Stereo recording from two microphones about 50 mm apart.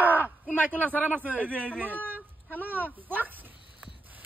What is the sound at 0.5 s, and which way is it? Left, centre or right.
A man's voice, left.